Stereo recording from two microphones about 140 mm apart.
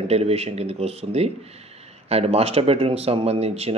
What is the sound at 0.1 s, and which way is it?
Speech, 50° right (ahead or behind).